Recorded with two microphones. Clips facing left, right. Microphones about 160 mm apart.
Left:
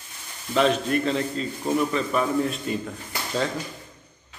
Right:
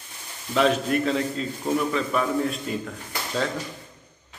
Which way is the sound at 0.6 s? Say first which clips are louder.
Even; 5° right (ahead or behind).